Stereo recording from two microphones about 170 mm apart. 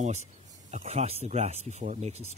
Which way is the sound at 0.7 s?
40° right (ahead or behind).